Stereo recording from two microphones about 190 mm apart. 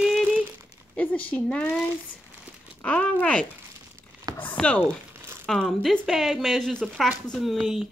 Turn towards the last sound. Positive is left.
turn(degrees=0)  # may be behind; listen again after turning